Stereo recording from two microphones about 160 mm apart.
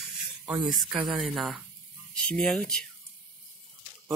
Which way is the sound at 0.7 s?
5° right (ahead or behind).